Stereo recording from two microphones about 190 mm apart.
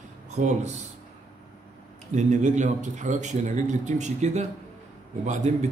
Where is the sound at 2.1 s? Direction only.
40° right (ahead or behind).